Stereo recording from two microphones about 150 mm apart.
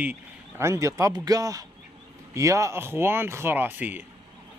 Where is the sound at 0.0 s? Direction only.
15° right (ahead or behind).